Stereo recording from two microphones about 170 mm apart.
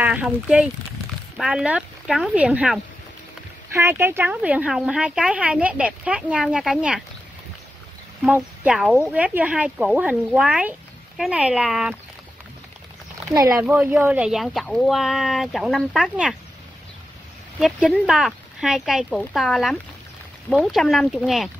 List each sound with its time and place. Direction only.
0.0 s speech: 5° right (ahead or behind)
8.2 s speech: 5° right (ahead or behind)
13.3 s speech: 20° right (ahead or behind); by 16.3 s centre (ahead or behind)
17.6 s speech: centre (ahead or behind)